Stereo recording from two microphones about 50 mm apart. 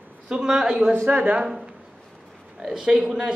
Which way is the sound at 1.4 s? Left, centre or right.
Right.